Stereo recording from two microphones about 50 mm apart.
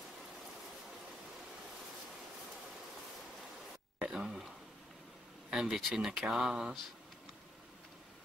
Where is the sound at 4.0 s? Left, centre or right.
Centre.